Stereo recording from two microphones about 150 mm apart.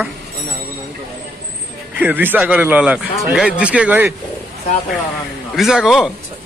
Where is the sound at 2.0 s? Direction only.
10° right (ahead or behind).